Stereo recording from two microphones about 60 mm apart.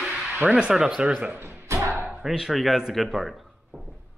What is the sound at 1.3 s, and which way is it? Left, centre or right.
Music, right.